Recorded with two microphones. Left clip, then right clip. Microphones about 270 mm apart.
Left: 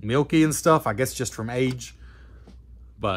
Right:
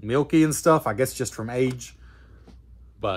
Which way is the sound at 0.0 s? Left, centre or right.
Left.